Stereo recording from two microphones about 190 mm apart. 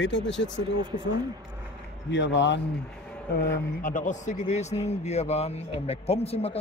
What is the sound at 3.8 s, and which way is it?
A man's voice, 40° left (ahead or behind).